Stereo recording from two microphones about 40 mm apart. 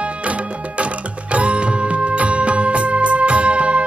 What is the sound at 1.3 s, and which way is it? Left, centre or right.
Music, right.